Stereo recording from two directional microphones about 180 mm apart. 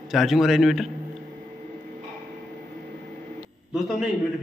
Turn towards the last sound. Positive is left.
turn(degrees=-5)  # may be behind; listen again after turning